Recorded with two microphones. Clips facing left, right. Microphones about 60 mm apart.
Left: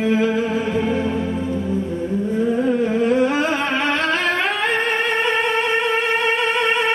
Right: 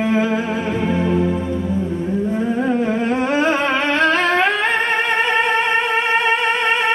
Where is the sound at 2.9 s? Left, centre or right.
Right.